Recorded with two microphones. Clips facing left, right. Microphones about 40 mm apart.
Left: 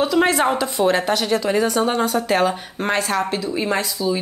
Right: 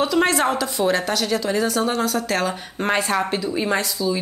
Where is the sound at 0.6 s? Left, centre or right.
Centre.